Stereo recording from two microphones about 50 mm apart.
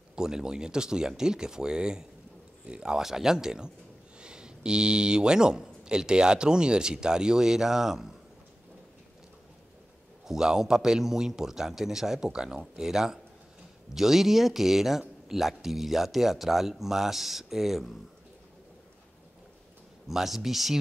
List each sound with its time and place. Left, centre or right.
0.1 s speech: centre
10.2 s speech: centre
20.1 s speech: centre